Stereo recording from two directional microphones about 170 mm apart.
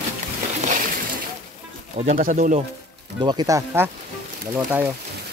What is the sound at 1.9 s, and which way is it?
Speech, 50° right (ahead or behind).